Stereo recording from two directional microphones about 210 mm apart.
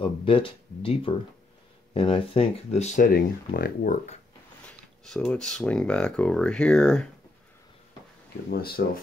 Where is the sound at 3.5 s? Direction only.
45° left (ahead or behind).